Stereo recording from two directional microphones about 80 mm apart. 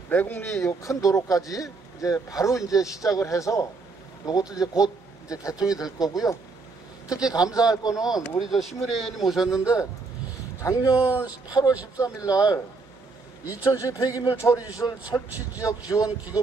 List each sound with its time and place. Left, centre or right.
0.1 s speech: left
0.8 s speech: left
7.3 s speech: left
8.4 s speech: centre
10.6 s speech: left
11.2 s speech: left
12.0 s speech: left
13.7 s speech: left
14.7 s speech: left